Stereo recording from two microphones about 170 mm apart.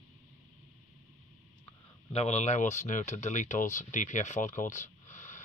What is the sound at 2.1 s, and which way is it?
Speech, 40° left (ahead or behind).